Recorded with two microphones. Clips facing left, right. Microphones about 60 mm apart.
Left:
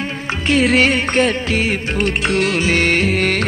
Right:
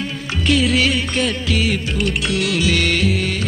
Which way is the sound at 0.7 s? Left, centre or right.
Left.